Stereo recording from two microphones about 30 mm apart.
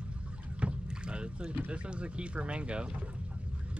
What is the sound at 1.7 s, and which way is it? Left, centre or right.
Speech, right.